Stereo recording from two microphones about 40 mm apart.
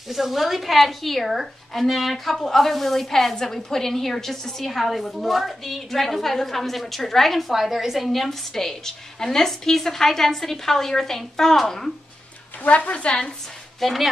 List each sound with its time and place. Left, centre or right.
0.1 s a woman's voice: centre
12.6 s speech: left
13.7 s speech: centre